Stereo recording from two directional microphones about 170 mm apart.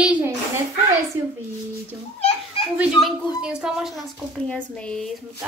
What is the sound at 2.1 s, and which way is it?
Children playing, 35° left (ahead or behind).